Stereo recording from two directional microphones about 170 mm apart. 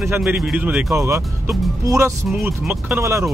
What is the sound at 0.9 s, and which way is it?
Speech, 15° right (ahead or behind).